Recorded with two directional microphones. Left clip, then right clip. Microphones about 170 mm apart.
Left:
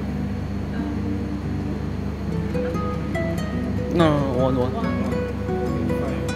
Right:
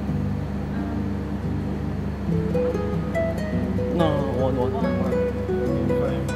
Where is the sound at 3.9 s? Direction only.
15° left (ahead or behind).